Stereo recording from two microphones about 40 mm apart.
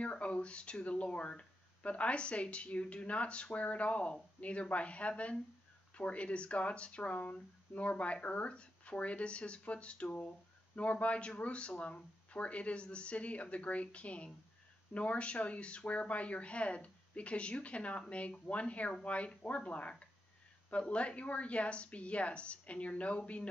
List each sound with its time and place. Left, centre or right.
0.0 s speech: left